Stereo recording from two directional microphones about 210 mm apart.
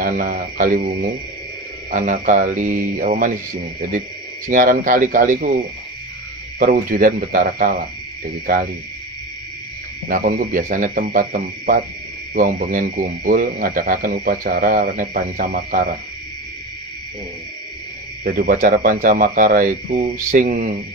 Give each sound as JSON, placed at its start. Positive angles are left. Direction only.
{"t": 0.0, "sound": "speech", "side_deg": -40}
{"t": 4.5, "sound": "speech", "side_deg": -40}
{"t": 6.6, "sound": "speech", "side_deg": -40}
{"t": 10.0, "sound": "speech", "side_deg": -40}
{"t": 18.2, "sound": "speech", "side_deg": -45}